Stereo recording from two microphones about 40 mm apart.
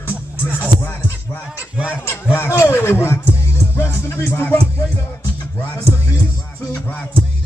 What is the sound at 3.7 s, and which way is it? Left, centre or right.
Music, left.